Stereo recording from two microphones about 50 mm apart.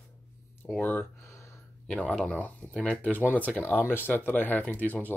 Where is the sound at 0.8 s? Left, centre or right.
Left.